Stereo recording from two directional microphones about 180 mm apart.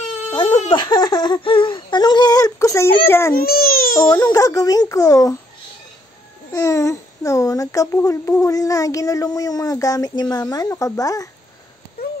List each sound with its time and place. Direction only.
0.1 s baby cry: 35° left (ahead or behind)
0.7 s a child's voice: 25° left (ahead or behind)
3.3 s baby cry: 55° left (ahead or behind)
4.1 s a child's voice: 20° left (ahead or behind)
6.5 s a child's voice: 15° left (ahead or behind)